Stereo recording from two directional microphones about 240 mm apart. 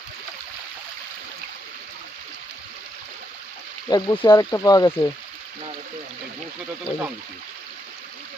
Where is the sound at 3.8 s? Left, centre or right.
Centre.